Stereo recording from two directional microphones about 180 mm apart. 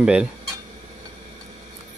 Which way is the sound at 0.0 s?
5° right (ahead or behind).